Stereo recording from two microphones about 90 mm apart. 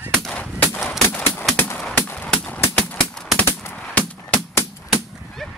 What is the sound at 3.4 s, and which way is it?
Machine gun, 30° left (ahead or behind).